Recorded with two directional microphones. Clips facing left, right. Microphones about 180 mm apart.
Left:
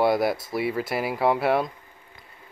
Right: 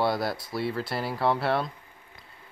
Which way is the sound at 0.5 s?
Centre (ahead or behind).